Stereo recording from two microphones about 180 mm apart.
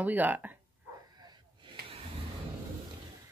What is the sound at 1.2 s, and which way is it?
Gasp, 25° right (ahead or behind).